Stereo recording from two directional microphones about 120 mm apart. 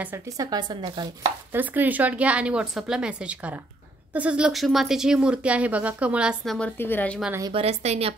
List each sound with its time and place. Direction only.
0.4 s speech: 35° right (ahead or behind)
1.5 s speech: 15° right (ahead or behind)
6.4 s a woman's voice: 5° left (ahead or behind)
6.8 s speech: 15° left (ahead or behind)
7.5 s speech: 60° right (ahead or behind)